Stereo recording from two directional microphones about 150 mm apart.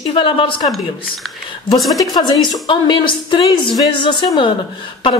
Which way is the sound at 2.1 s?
25° left (ahead or behind).